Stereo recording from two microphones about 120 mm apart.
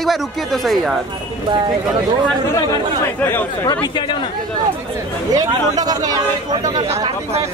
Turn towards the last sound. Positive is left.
turn(degrees=-35)  # may be behind; listen again after turning